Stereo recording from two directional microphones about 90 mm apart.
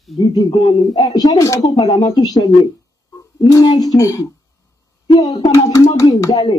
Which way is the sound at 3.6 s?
45° left (ahead or behind).